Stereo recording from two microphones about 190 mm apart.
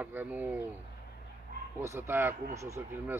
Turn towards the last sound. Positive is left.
turn(degrees=-15)  # may be behind; listen again after turning